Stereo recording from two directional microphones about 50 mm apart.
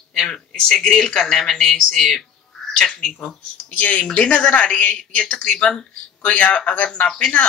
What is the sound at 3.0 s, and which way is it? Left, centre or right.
Speech, left.